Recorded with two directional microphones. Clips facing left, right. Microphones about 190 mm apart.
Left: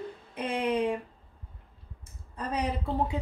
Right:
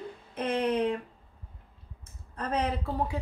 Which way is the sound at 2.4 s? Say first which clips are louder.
Right 1 dB; 20° left (ahead or behind).